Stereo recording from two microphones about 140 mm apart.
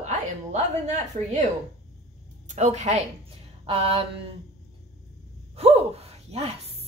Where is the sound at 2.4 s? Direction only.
55° right (ahead or behind).